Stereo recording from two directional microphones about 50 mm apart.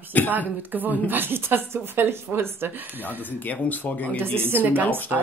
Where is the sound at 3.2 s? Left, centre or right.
Left.